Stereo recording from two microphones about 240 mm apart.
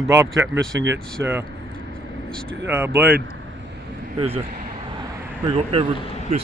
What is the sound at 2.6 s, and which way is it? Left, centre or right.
Speech, centre.